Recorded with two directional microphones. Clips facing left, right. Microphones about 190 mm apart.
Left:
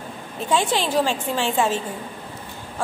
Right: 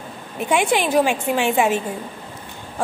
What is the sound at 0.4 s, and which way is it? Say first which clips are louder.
A woman's voice: right 3 dB; 15° right (ahead or behind).